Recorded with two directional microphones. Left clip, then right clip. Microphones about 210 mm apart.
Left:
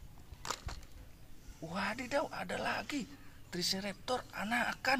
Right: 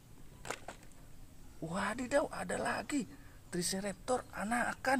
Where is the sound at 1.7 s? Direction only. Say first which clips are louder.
Right 2 dB; 55° right (ahead or behind).